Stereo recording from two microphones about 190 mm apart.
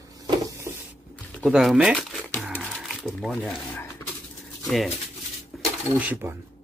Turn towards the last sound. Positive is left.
turn(degrees=-10)  # may be behind; listen again after turning